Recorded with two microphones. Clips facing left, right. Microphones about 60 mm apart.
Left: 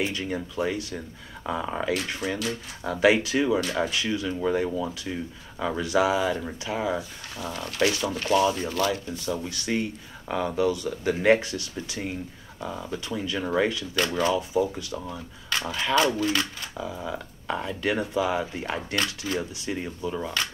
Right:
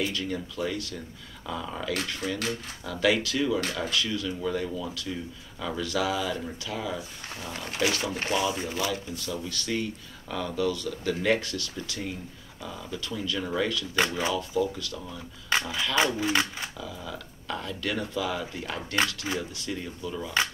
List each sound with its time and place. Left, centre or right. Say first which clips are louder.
0.0 s speech: left 2 dB; left
7.5 s speech: left 3 dB; right
8.8 s speech: left 4 dB; left
13.9 s speech: left 2 dB; centre
14.3 s speech: left 3 dB; left
15.5 s a sound: right 2 dB; right
16.2 s speech: left 1 dB; right
16.7 s speech: left 5 dB; left
19.2 s speech: left 2 dB; right
19.6 s speech: left 4 dB; left